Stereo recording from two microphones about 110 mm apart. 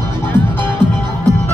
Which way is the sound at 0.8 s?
45° right (ahead or behind).